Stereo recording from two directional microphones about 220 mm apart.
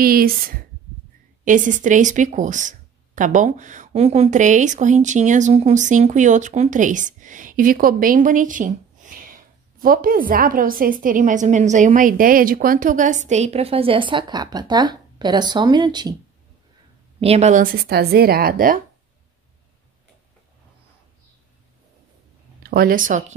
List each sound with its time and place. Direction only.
0.0 s speech: 40° right (ahead or behind); by 16.2 s 20° right (ahead or behind)
17.2 s speech: 30° right (ahead or behind)
22.6 s speech: 45° right (ahead or behind)